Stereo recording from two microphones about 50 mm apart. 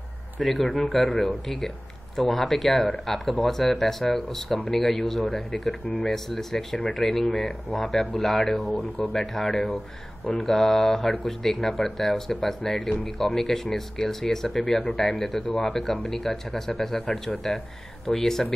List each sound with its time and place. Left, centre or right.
0.4 s speech: centre
7.2 s speech: centre
7.7 s speech: centre
8.7 s speech: left
9.1 s speech: centre